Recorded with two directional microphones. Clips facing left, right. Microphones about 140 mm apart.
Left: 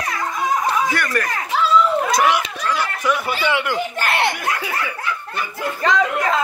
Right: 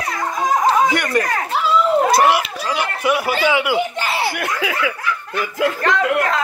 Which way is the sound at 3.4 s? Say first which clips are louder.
Right 3 dB; 5° right (ahead or behind).